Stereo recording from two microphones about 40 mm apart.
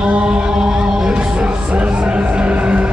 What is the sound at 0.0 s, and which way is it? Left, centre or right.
Music, right.